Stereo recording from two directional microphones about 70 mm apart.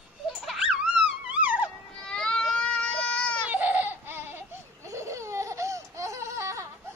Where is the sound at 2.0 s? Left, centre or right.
Centre.